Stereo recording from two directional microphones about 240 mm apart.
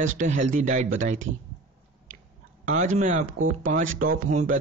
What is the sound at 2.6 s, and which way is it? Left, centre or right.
Speech, right.